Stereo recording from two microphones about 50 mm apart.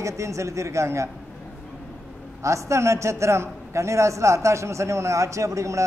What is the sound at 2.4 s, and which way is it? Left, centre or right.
A man's voice, right.